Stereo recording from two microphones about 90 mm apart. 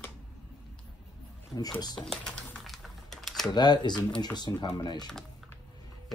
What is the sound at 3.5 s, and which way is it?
Speech, 55° left (ahead or behind).